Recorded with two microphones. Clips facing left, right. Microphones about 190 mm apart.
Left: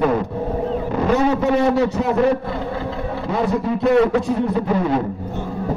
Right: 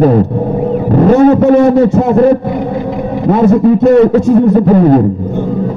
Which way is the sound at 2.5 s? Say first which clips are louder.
Right 9 dB; 15° right (ahead or behind).